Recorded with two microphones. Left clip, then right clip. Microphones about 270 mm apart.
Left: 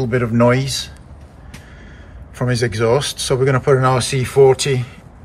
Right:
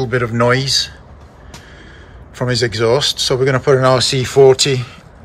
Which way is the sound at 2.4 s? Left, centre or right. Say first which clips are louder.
Right 2 dB; centre.